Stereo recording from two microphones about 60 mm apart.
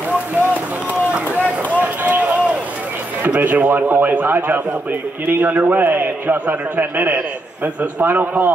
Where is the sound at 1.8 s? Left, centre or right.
Right.